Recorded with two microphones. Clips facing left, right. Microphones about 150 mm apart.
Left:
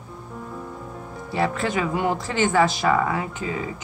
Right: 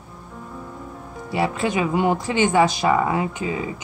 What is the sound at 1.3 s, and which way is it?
Speech, 15° right (ahead or behind).